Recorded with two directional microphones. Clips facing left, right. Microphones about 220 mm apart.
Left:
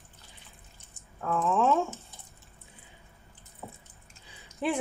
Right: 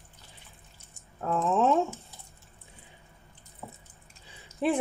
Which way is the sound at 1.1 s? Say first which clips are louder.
Right 1 dB; 25° right (ahead or behind).